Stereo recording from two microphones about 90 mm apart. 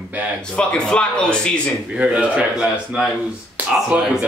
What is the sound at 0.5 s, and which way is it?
Speech, 10° left (ahead or behind).